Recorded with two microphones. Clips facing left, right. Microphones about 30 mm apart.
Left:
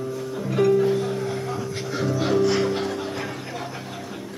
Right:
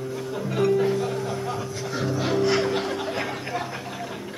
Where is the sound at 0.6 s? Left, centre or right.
Centre.